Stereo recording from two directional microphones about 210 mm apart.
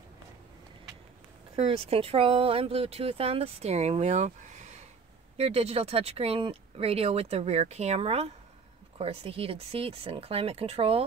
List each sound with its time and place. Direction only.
1.5 s speech: 30° right (ahead or behind)